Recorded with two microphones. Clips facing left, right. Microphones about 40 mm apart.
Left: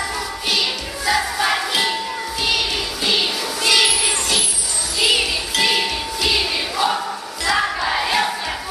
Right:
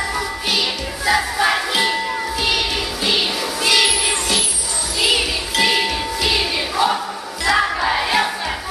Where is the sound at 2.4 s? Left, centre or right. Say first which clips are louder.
Left 1 dB; centre.